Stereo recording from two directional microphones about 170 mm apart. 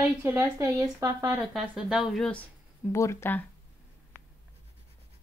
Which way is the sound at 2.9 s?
15° left (ahead or behind).